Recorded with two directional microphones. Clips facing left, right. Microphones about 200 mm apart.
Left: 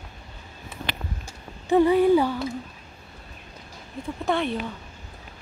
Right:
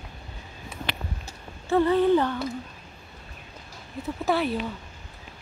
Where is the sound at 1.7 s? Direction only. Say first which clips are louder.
Left 3 dB; 15° left (ahead or behind).